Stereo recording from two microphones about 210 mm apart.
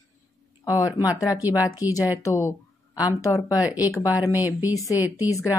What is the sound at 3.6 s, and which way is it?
Speech, 10° right (ahead or behind).